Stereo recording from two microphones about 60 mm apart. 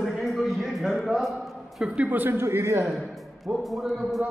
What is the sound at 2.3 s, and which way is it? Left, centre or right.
Speech, right.